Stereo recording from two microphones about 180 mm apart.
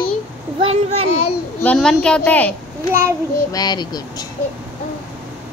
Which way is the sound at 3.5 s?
25° left (ahead or behind).